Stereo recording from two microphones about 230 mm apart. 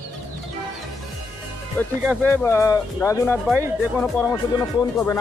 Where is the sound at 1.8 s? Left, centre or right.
Centre.